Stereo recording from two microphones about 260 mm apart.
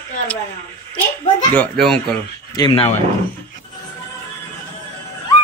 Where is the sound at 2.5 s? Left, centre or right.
Centre.